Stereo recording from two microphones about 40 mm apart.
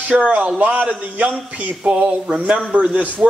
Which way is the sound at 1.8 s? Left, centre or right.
Right.